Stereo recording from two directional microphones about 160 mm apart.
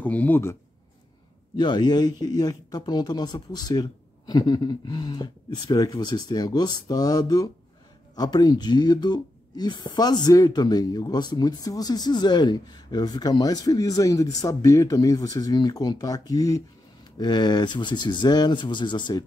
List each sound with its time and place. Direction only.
0.0 s speech: 10° left (ahead or behind)
1.6 s speech: 25° left (ahead or behind)